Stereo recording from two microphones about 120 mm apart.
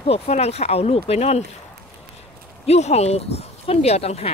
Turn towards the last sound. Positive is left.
turn(degrees=60)  # may be behind; listen again after turning